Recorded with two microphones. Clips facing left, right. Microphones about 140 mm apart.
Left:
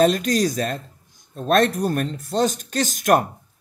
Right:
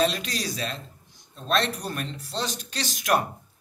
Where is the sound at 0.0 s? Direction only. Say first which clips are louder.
Left 8 dB; 45° left (ahead or behind).